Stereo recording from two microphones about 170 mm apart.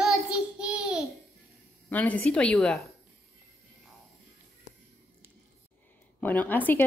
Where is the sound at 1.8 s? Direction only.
10° left (ahead or behind).